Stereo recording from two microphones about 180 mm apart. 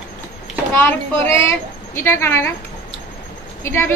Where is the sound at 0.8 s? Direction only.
15° left (ahead or behind).